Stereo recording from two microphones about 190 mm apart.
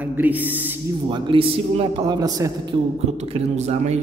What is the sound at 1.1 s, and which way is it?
Speech, 30° right (ahead or behind).